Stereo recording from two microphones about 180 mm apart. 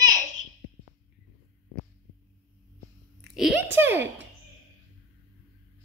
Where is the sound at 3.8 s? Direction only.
10° right (ahead or behind).